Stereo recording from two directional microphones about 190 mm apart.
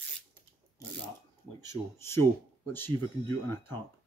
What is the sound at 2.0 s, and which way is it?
Speech, 15° left (ahead or behind).